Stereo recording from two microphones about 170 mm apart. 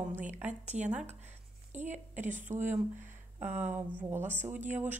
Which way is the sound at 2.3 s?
45° right (ahead or behind).